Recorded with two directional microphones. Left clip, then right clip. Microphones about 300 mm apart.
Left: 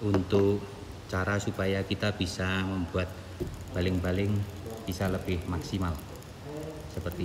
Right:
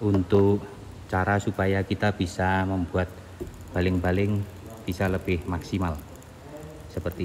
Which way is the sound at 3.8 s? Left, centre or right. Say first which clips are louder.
Right 5 dB; centre.